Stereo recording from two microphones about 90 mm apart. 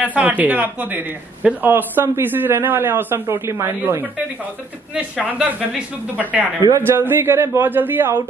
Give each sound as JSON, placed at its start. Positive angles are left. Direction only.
{"t": 0.0, "sound": "a man's voice", "side_deg": -15}
{"t": 5.2, "sound": "a man's voice", "side_deg": -20}